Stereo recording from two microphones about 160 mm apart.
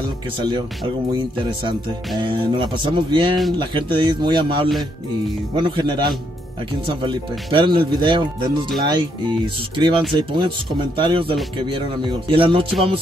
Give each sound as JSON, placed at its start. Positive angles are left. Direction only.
{"t": 1.4, "sound": "speech", "side_deg": -30}